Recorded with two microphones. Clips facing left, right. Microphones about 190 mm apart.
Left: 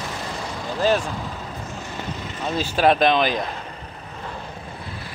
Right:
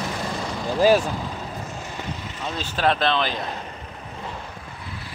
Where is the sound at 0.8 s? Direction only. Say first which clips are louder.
Right 3 dB; 10° right (ahead or behind).